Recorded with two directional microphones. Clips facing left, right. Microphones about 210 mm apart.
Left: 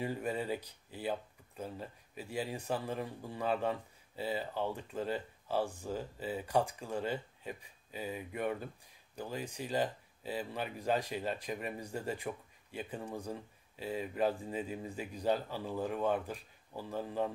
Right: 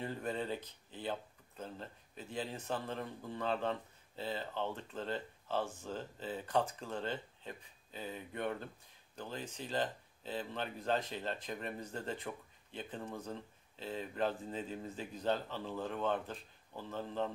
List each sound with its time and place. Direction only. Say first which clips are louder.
0.0 s speech: left 3 dB; 10° left (ahead or behind)